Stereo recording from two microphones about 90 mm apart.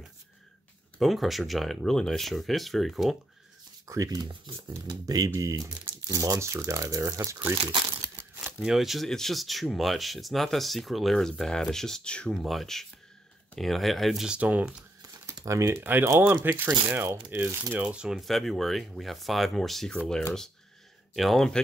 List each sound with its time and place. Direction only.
1.0 s speech: centre (ahead or behind)
3.8 s speech: 40° right (ahead or behind)
8.5 s speech: 5° right (ahead or behind)
15.0 s crumpling: 35° right (ahead or behind)
15.7 s speech: 20° right (ahead or behind)
17.7 s speech: 10° right (ahead or behind)
21.1 s speech: centre (ahead or behind)